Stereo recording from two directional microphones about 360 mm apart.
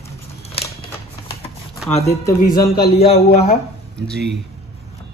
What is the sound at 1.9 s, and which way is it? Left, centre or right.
Speech, centre.